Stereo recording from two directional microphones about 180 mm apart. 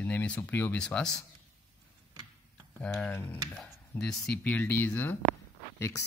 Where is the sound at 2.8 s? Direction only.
10° left (ahead or behind).